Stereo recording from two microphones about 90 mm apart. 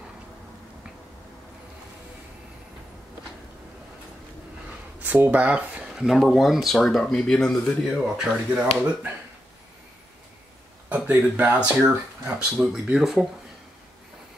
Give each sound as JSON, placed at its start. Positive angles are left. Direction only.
{"t": 5.0, "sound": "speech", "side_deg": -20}
{"t": 7.9, "sound": "speech", "side_deg": -5}
{"t": 10.9, "sound": "speech", "side_deg": -20}